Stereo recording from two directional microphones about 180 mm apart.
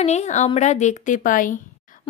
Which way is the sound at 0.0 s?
40° left (ahead or behind).